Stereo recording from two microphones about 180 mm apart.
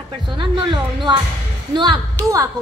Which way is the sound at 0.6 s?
25° right (ahead or behind).